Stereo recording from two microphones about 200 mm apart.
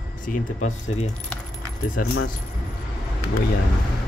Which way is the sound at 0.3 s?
35° left (ahead or behind).